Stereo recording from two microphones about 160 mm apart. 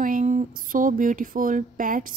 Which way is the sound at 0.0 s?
50° right (ahead or behind).